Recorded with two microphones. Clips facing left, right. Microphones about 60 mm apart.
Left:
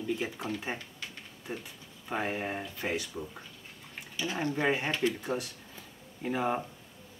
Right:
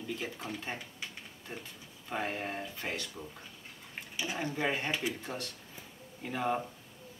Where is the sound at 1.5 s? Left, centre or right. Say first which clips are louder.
Left 5 dB; centre.